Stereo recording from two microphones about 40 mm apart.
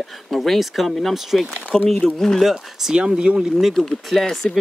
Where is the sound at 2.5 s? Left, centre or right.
Centre.